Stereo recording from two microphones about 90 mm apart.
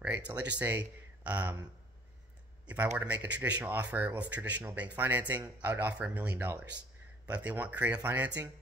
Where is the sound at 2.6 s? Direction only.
20° right (ahead or behind).